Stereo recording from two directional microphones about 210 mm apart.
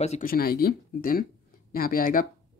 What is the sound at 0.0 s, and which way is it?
Speech, 30° left (ahead or behind).